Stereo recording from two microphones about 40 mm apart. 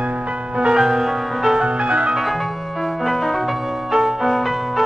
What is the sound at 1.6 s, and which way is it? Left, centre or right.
Music, right.